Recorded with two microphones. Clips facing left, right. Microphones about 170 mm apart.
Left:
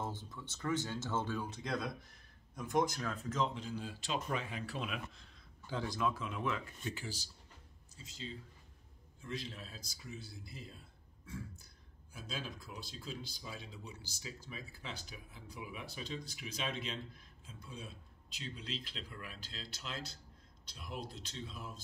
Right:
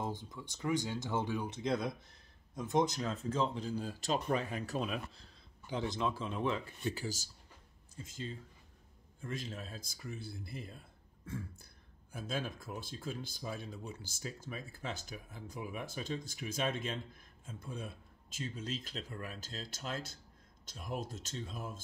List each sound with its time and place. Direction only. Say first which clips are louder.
0.0 s speech: right 3 dB; 15° right (ahead or behind); by 5.4 s 35° right (ahead or behind)
5.7 s speech: right 1 dB; 20° right (ahead or behind); by 7.2 s 40° right (ahead or behind)
7.9 s speech: right 4 dB; 50° right (ahead or behind)